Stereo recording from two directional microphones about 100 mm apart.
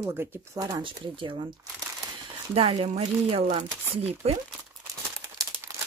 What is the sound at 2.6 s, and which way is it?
Speech, 80° right.